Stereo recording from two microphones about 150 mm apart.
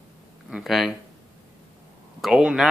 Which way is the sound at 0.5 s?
Centre (ahead or behind).